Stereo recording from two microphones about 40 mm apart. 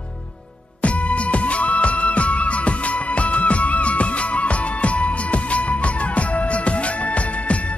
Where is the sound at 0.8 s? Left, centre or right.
Left.